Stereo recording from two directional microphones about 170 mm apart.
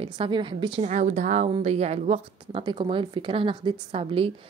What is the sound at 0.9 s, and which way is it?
Speech, 45° right (ahead or behind).